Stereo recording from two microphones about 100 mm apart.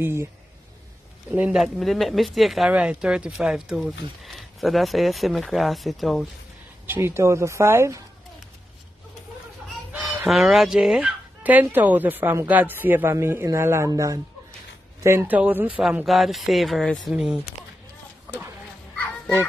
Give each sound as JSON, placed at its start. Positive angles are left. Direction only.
{"t": 0.0, "sound": "speech", "side_deg": -25}
{"t": 1.5, "sound": "speech", "side_deg": 0}
{"t": 2.7, "sound": "speech", "side_deg": -10}
{"t": 6.9, "sound": "speech", "side_deg": -25}
{"t": 9.9, "sound": "fowl", "side_deg": -20}
{"t": 10.3, "sound": "speech", "side_deg": 0}
{"t": 15.0, "sound": "a woman's voice", "side_deg": -20}
{"t": 17.1, "sound": "a woman's voice", "side_deg": -5}